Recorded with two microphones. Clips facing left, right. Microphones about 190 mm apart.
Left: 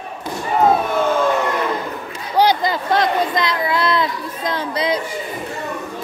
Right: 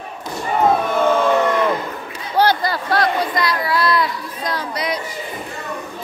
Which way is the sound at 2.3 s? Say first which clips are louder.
Left 1 dB; 15° left (ahead or behind).